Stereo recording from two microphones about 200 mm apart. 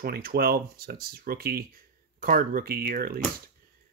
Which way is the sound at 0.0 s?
50° right (ahead or behind).